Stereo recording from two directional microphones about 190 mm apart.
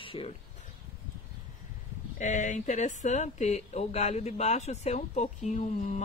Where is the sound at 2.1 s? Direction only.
40° left (ahead or behind).